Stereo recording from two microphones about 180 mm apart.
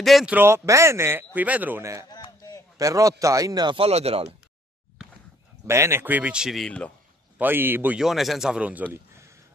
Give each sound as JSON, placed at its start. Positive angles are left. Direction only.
{"t": 0.0, "sound": "speech", "side_deg": 0}
{"t": 2.0, "sound": "a sound", "side_deg": 20}
{"t": 2.8, "sound": "speech", "side_deg": -20}
{"t": 5.7, "sound": "speech", "side_deg": -15}
{"t": 7.3, "sound": "speech", "side_deg": -10}